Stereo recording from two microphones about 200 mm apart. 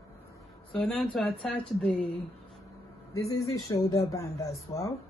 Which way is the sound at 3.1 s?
15° left (ahead or behind).